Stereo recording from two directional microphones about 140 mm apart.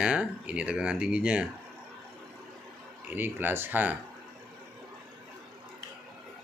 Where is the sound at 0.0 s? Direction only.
5° right (ahead or behind).